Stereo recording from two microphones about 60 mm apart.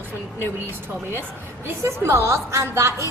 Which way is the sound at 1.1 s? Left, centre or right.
Right.